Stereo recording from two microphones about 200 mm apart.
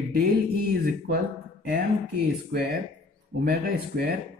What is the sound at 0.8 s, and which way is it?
Speech, 50° right (ahead or behind).